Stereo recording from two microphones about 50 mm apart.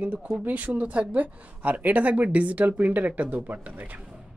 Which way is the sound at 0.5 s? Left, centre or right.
Right.